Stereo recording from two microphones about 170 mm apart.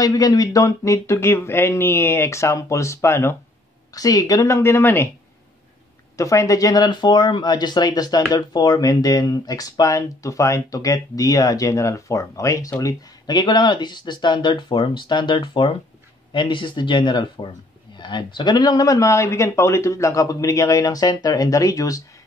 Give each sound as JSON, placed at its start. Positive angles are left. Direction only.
{"t": 0.0, "sound": "speech", "side_deg": 20}
{"t": 6.1, "sound": "speech", "side_deg": 20}